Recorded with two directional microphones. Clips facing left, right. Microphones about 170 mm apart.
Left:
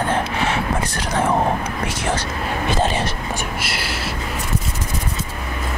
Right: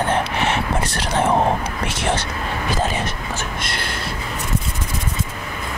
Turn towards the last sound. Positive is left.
turn(degrees=5)  # may be behind; listen again after turning